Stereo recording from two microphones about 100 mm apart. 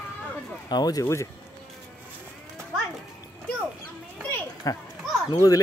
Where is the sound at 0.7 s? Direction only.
40° left (ahead or behind).